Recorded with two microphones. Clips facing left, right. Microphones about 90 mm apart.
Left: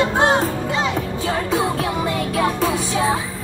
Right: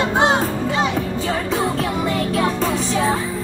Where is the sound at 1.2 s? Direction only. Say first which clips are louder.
Left 3 dB; centre (ahead or behind).